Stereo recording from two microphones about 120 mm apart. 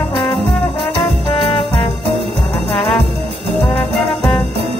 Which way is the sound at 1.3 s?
45° left (ahead or behind).